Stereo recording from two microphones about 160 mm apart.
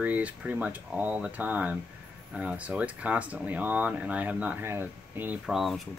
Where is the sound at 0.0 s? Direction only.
10° right (ahead or behind).